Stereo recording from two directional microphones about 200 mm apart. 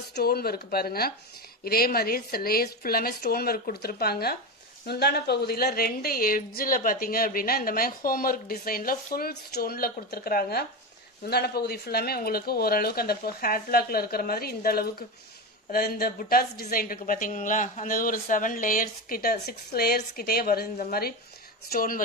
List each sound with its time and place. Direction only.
0.1 s a woman's voice: 50° left (ahead or behind)